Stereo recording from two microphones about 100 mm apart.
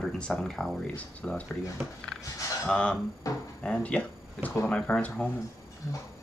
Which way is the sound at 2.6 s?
5° left (ahead or behind).